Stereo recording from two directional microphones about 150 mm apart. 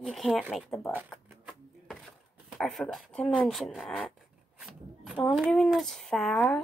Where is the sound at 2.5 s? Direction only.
Centre (ahead or behind).